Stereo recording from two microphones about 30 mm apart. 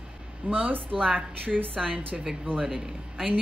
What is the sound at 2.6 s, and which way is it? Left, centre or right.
Speech, centre.